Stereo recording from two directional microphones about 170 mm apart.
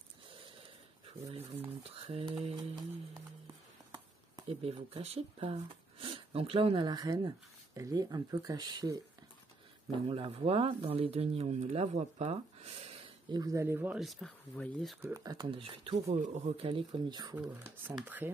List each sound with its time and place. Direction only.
1.8 s speech: 35° right (ahead or behind)
3.9 s speech: 30° right (ahead or behind)
12.8 s speech: 25° right (ahead or behind); by 15.0 s 5° left (ahead or behind)
15.0 s speech: 15° right (ahead or behind)
15.6 s speech: 35° right (ahead or behind)
17.8 s speech: 10° right (ahead or behind)